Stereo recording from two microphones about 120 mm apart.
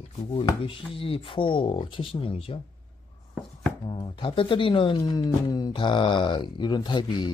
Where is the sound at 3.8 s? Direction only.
45° left (ahead or behind).